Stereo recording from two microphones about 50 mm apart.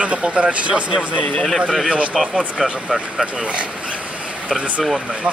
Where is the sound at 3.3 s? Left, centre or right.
Right.